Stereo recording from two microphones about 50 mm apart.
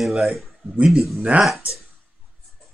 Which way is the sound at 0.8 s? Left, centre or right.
Centre.